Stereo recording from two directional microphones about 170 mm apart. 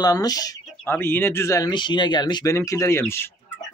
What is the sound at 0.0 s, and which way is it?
Speech, 20° left (ahead or behind).